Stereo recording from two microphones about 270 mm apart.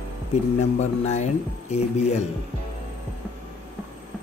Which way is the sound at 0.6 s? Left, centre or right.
Left.